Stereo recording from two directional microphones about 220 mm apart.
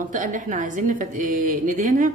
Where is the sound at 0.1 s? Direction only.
35° right (ahead or behind).